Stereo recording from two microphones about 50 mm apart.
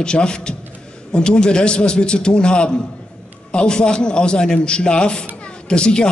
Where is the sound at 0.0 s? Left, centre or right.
Centre.